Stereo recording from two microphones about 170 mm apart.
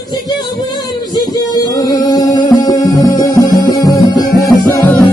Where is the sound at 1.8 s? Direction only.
20° left (ahead or behind).